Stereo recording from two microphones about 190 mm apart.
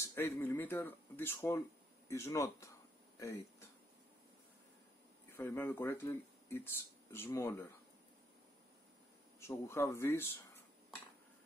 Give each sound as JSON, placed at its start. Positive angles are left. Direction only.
{"t": 0.0, "sound": "speech", "side_deg": 15}
{"t": 5.3, "sound": "speech", "side_deg": 10}
{"t": 9.4, "sound": "speech", "side_deg": 15}